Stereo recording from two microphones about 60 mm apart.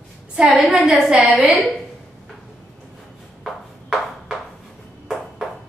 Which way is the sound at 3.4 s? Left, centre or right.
Centre.